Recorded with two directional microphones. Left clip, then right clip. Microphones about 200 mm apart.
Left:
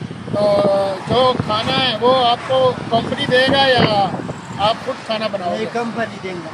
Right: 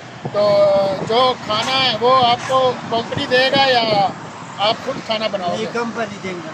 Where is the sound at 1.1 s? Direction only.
15° right (ahead or behind).